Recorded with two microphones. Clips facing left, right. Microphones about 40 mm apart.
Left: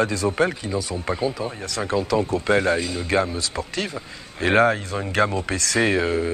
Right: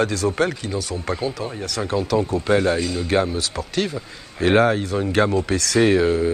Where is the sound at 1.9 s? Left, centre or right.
Left.